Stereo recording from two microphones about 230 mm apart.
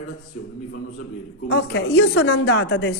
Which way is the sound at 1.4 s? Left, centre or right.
Left.